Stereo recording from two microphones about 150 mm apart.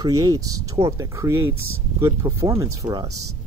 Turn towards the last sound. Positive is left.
turn(degrees=-25)  # may be behind; listen again after turning